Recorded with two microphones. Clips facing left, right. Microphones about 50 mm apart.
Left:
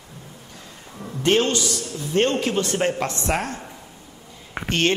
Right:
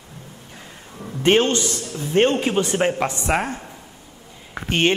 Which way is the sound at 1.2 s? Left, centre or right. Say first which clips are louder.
Right 2 dB; right.